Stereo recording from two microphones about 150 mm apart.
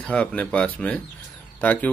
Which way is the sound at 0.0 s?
5° left (ahead or behind).